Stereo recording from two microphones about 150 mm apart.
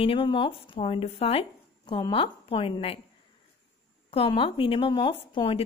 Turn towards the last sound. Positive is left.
turn(degrees=35)  # may be behind; listen again after turning